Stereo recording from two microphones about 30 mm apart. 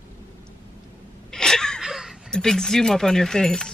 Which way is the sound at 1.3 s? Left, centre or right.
Left.